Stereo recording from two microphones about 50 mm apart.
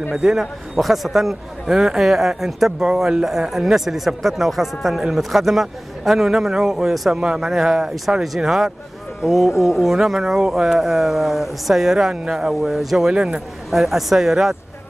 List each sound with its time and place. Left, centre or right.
0.1 s speech: centre
0.7 s speech: centre
8.4 s speech: centre
9.2 s speech: centre
13.1 s speech: centre
13.7 s speech: centre